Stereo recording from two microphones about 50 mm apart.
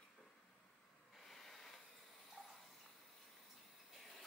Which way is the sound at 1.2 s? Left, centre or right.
Centre.